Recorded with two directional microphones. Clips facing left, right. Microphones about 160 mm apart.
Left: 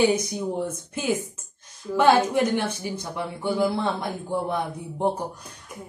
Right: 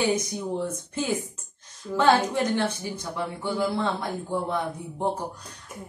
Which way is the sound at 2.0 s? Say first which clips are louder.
Left 2 dB; 15° left (ahead or behind).